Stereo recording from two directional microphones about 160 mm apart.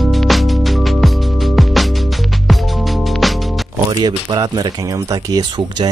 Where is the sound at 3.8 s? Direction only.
25° right (ahead or behind).